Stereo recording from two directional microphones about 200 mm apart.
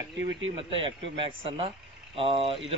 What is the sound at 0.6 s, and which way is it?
A man's voice, 25° right (ahead or behind).